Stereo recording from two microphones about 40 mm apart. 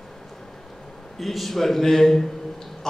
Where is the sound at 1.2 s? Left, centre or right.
Centre.